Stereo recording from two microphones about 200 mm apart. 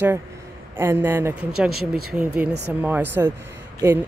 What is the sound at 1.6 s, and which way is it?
Speech, 50° right (ahead or behind).